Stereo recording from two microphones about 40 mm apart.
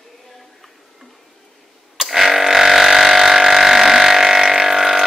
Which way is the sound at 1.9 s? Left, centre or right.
Centre.